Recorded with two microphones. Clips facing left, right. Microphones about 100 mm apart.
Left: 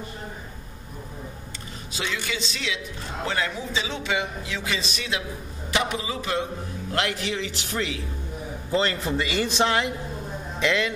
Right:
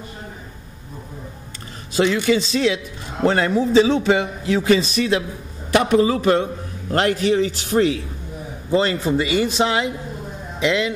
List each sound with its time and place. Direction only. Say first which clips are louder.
2.0 s a man's voice: right 13 dB; 50° right (ahead or behind)
8.6 s a man's voice: right 6 dB; 20° right (ahead or behind)